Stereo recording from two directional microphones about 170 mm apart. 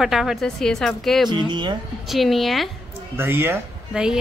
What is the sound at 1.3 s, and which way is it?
Speech, 25° right (ahead or behind).